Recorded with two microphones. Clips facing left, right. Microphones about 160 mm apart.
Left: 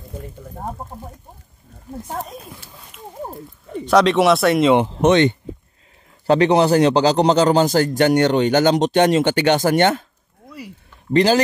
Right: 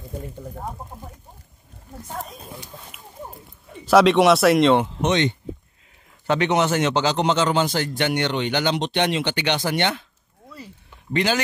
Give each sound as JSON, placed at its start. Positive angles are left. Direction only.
{"t": 2.9, "sound": "speech", "side_deg": -10}
{"t": 5.0, "sound": "speech", "side_deg": 55}
{"t": 6.2, "sound": "a man's voice", "side_deg": 35}
{"t": 11.1, "sound": "a man's voice", "side_deg": 35}